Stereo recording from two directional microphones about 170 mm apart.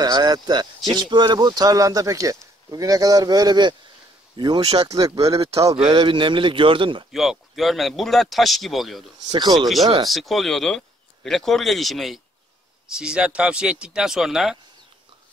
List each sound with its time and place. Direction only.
0.0 s speech: 25° right (ahead or behind)
7.1 s speech: centre (ahead or behind)
9.3 s speech: 25° right (ahead or behind)
10.0 s speech: centre (ahead or behind)